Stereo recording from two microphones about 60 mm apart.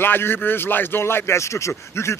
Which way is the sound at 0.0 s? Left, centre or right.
Left.